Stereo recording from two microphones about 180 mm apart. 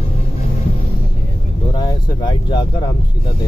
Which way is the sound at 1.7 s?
25° left (ahead or behind).